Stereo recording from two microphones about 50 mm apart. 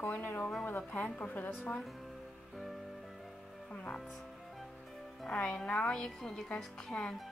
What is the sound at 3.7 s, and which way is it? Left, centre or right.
Music, left.